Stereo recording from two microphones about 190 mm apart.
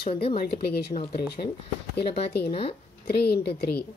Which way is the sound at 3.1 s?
60° left (ahead or behind).